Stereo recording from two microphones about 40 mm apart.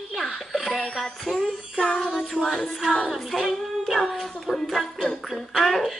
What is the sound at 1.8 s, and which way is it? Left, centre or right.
Child singing, left.